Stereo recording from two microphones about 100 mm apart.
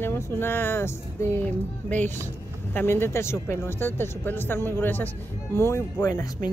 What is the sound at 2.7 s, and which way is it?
Speech, 25° left (ahead or behind).